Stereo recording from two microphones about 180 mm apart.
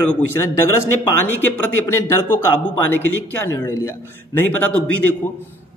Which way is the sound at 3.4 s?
15° left (ahead or behind).